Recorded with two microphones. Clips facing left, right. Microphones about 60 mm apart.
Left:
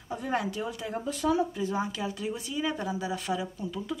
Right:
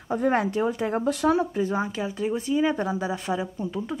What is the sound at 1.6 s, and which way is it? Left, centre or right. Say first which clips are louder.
Speech: right 4 dB; right.